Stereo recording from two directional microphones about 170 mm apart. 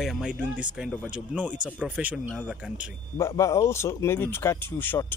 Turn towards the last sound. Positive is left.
turn(degrees=10)  # may be behind; listen again after turning